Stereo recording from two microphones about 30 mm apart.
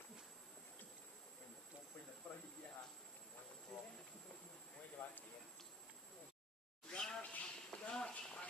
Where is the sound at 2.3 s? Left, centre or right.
Left.